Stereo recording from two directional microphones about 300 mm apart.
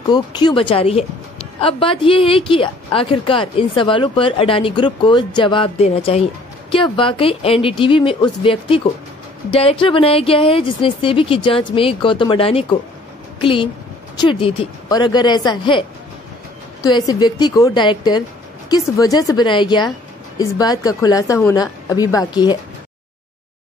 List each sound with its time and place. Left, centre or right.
0.1 s a woman's voice: centre
16.9 s a woman's voice: centre